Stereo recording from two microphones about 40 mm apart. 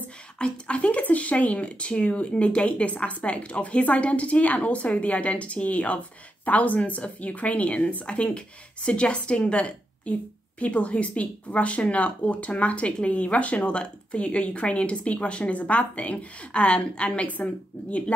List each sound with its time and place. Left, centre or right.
0.4 s a woman's voice: left